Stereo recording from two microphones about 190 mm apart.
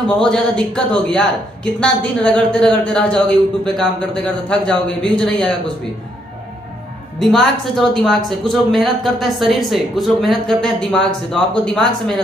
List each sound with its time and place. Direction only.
0.2 s a woman's voice: 5° left (ahead or behind)
7.2 s a woman's voice: centre (ahead or behind)